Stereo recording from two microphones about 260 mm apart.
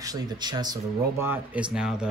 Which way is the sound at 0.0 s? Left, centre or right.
Centre.